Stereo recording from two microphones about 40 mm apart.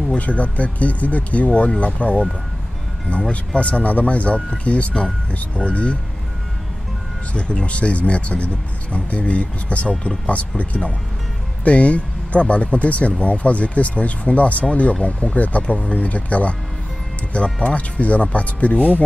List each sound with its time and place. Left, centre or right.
0.1 s speech: left
7.3 s speech: left